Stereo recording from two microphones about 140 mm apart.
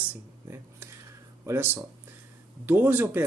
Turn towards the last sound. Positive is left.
turn(degrees=-15)  # may be behind; listen again after turning